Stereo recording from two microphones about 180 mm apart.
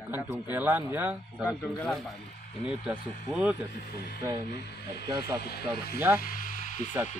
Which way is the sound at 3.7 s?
55° left (ahead or behind).